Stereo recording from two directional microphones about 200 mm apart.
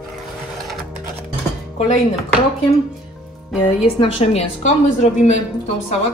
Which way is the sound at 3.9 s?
30° left (ahead or behind).